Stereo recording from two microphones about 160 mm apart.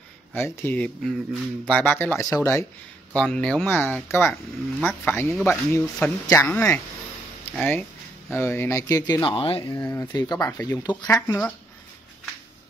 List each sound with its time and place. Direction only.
0.3 s speech: 15° left (ahead or behind)
3.1 s speech: 5° left (ahead or behind); by 9.8 s 30° left (ahead or behind)
9.8 s speech: 20° left (ahead or behind)